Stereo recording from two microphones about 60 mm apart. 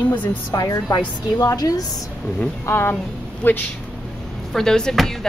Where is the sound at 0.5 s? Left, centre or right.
Left.